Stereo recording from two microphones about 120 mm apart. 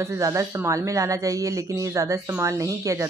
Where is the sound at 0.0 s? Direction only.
25° right (ahead or behind).